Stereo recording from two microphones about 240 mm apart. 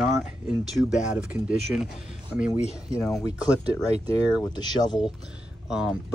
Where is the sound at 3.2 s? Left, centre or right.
Centre.